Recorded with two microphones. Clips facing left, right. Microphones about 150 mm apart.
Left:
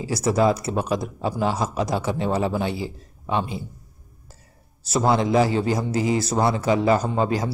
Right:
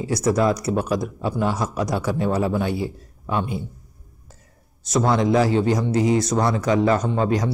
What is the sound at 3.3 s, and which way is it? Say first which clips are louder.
Speech: even; 25° left (ahead or behind).